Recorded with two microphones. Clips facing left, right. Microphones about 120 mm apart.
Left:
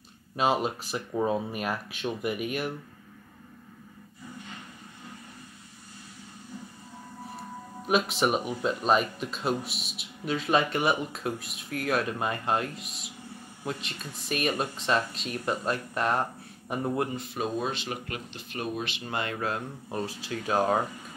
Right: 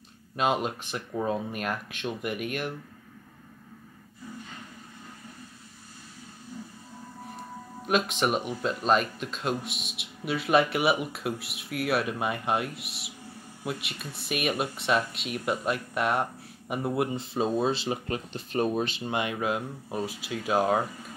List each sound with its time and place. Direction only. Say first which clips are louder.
0.4 s speech: left 1 dB; centre (ahead or behind)
7.8 s speech: left 1 dB; 5° left (ahead or behind)
17.1 s speech: right 4 dB; 25° right (ahead or behind)
19.0 s speech: left 1 dB; 15° right (ahead or behind)